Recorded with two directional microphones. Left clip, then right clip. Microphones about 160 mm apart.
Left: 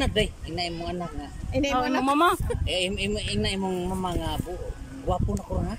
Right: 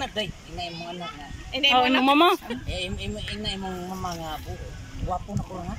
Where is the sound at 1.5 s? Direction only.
35° left (ahead or behind).